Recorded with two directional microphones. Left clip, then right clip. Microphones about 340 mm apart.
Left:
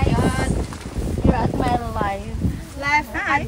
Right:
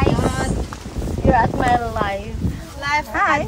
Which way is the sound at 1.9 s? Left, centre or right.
Right.